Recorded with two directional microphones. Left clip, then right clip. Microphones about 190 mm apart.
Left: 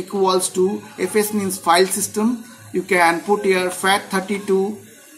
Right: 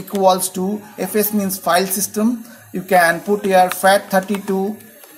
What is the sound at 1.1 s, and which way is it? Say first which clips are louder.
Speech: right 1 dB; 40° right (ahead or behind).